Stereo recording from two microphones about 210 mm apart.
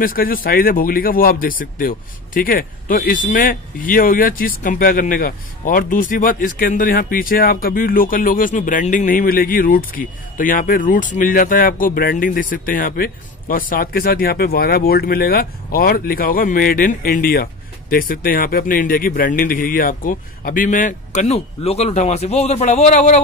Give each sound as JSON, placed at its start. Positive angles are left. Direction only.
{"t": 0.0, "sound": "speech", "side_deg": 40}